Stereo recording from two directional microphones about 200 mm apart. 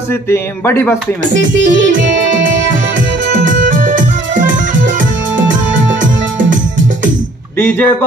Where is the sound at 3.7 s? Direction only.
40° right (ahead or behind).